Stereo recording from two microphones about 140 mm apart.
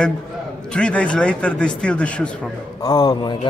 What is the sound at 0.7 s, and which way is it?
Speech, 5° left (ahead or behind).